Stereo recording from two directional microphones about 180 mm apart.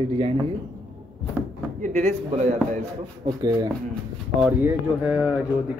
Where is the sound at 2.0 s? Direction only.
40° right (ahead or behind).